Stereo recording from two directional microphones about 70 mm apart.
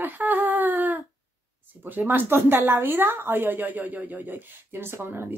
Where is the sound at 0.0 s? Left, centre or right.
Right.